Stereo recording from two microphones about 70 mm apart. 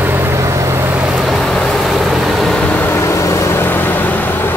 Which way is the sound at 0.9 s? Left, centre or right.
Right.